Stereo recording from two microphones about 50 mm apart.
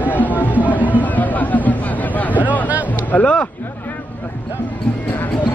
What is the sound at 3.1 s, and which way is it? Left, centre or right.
Speech, left.